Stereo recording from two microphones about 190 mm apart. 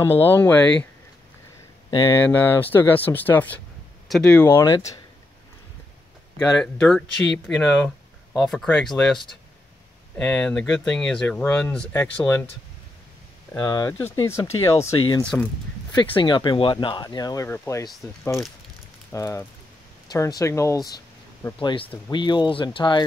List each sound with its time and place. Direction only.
0.0 s speech: 10° left (ahead or behind)
1.9 s speech: 20° left (ahead or behind)
2.2 s speech: 10° left (ahead or behind)
6.3 s speech: 5° left (ahead or behind)
13.5 s speech: 20° left (ahead or behind)
15.2 s speech: 5° left (ahead or behind)
16.2 s speech: 25° left (ahead or behind)
19.1 s speech: 15° left (ahead or behind)